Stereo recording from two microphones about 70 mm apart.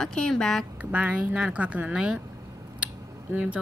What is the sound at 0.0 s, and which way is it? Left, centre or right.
Speech, centre.